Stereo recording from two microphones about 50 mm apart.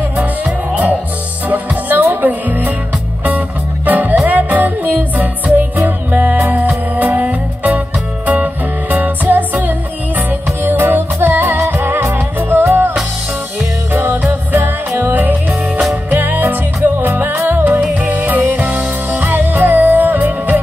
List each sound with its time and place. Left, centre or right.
1.5 s music: right
13.9 s music: right